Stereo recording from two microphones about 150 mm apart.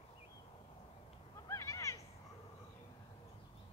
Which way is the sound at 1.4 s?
20° left (ahead or behind).